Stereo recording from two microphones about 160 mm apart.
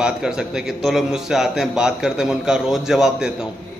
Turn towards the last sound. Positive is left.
turn(degrees=-5)  # may be behind; listen again after turning